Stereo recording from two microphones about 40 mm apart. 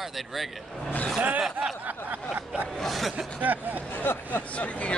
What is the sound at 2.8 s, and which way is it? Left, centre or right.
Speech, centre.